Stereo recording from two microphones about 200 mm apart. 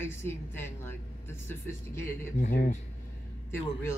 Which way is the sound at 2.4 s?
50° left (ahead or behind).